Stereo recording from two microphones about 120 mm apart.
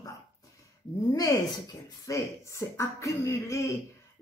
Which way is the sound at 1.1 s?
30° left (ahead or behind).